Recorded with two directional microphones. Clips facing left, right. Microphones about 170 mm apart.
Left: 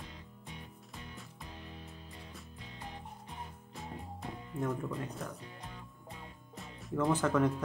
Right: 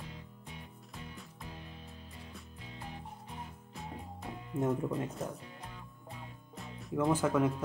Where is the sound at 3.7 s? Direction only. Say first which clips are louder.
Even; centre (ahead or behind).